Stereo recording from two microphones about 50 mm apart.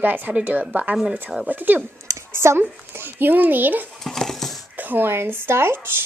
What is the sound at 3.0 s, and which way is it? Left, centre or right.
Speech, right.